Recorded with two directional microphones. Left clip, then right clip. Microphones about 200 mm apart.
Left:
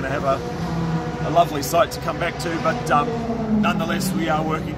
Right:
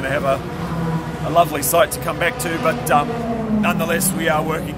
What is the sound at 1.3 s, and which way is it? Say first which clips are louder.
Speech: right 3 dB; 15° right (ahead or behind).